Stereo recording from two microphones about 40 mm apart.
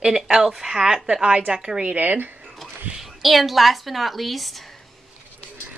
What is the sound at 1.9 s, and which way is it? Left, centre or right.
Speech, right.